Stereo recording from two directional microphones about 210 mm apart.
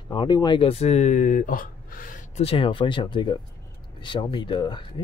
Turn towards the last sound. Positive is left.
turn(degrees=20)  # may be behind; listen again after turning